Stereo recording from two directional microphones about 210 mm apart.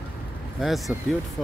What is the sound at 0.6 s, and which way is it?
Speech, centre (ahead or behind).